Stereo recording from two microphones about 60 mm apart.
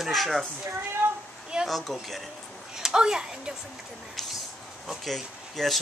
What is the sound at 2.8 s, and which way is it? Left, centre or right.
Speech, centre.